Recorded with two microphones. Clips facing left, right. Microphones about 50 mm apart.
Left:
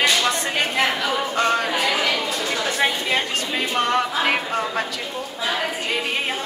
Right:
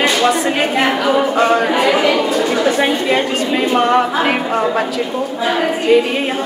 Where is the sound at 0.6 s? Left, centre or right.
Centre.